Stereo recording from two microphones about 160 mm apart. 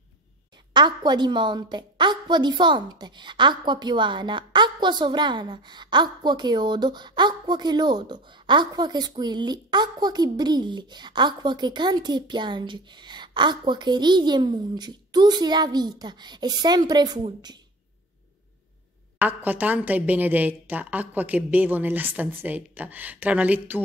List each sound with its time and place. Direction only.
0.7 s a woman's voice: 30° right (ahead or behind)
19.1 s a woman's voice: 10° right (ahead or behind)